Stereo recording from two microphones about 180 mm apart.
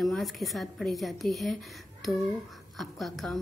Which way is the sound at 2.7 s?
Centre (ahead or behind).